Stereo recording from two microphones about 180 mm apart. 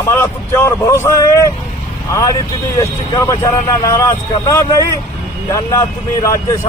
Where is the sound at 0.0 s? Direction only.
15° left (ahead or behind).